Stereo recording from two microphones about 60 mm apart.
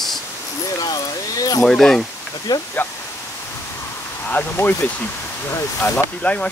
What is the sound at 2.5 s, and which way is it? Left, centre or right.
Speech, left.